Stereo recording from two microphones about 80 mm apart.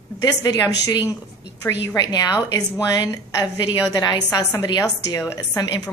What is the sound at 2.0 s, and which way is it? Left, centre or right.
A woman's voice, left.